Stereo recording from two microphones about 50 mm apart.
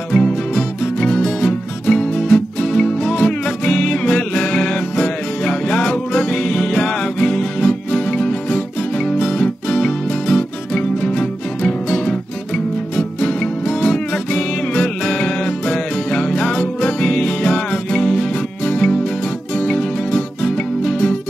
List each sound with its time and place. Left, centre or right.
0.1 s music: centre